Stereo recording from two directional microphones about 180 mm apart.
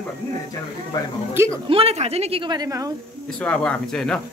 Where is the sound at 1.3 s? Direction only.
15° right (ahead or behind).